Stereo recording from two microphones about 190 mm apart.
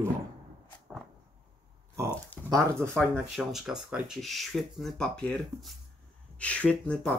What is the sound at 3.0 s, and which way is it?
Speech, 5° right (ahead or behind).